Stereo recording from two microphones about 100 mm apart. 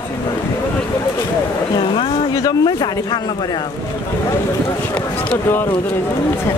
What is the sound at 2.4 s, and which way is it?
Speech, 40° left (ahead or behind).